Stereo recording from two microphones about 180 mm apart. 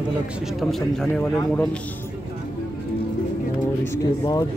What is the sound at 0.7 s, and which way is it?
Speech, 5° left (ahead or behind).